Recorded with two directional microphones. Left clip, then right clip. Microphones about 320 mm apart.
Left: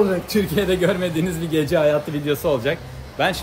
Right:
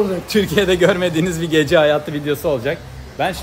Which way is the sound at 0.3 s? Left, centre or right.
Centre.